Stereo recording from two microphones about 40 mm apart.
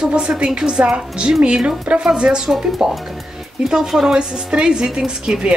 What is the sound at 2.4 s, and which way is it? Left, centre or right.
Speech, centre.